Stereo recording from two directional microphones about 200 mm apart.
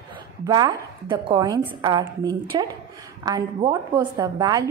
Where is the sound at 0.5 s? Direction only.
20° right (ahead or behind).